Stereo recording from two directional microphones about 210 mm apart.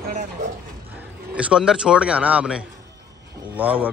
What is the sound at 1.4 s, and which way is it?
A man's voice, 5° right (ahead or behind).